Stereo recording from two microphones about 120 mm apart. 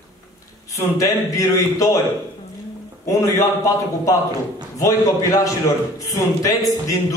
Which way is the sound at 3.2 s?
25° left (ahead or behind).